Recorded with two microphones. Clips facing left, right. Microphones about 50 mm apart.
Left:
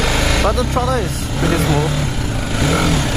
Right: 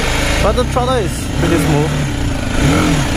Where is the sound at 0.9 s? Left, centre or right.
Right.